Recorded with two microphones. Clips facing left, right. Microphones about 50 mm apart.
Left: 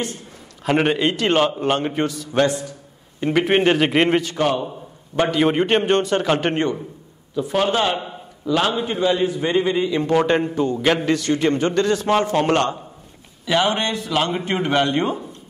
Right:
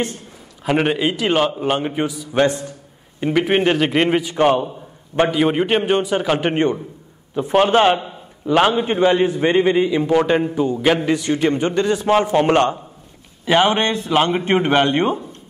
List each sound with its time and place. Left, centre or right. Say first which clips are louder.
0.7 s a man's voice: even; centre
2.4 s a man's voice: right 3 dB; right
3.2 s a man's voice: right 1 dB; centre
4.4 s a man's voice: right 5 dB; right
5.3 s a man's voice: even; centre
6.5 s a man's voice: right 3 dB; right
9.9 s a man's voice: right 2 dB; centre
13.5 s a man's voice: right 4 dB; right